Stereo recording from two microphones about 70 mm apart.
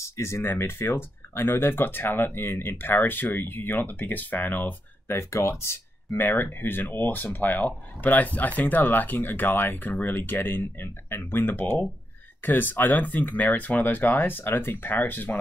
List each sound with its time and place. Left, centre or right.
0.0 s speech: left
5.0 s speech: left